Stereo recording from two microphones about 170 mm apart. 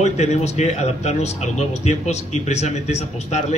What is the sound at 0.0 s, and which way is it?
Speech, 40° left (ahead or behind).